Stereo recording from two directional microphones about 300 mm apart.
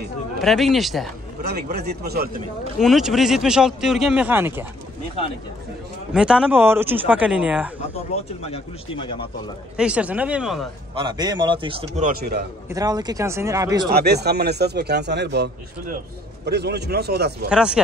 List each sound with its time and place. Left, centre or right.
0.4 s speech: centre
1.4 s a man's voice: right
2.8 s speech: centre
6.1 s speech: centre
8.4 s speech: centre
9.8 s speech: centre
11.0 s speech: centre
12.2 s a man's voice: right
12.6 s speech: centre
13.9 s a man's voice: right
17.5 s speech: centre